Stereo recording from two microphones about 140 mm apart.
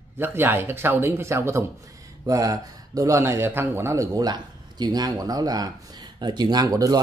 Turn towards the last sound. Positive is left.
turn(degrees=-25)  # may be behind; listen again after turning